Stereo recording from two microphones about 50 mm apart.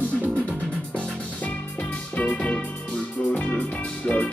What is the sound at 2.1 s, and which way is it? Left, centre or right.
Music, left.